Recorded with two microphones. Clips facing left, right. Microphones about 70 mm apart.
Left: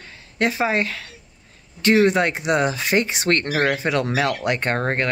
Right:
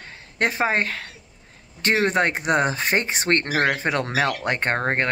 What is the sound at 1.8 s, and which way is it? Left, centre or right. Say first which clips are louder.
Speech: left 4 dB; right.